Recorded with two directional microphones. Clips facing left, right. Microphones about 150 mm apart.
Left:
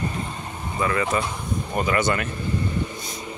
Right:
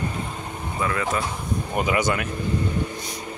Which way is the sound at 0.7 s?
Centre (ahead or behind).